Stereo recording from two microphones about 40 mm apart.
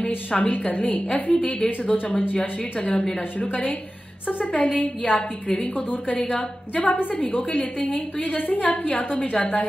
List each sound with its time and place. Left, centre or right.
0.0 s a woman's voice: left